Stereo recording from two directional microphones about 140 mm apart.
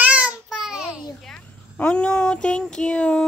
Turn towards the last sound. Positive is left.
turn(degrees=5)  # may be behind; listen again after turning